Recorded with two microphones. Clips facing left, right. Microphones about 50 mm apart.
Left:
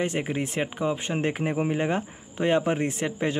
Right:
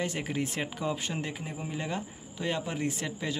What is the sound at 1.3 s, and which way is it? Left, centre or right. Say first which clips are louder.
Speech: left 11 dB; left.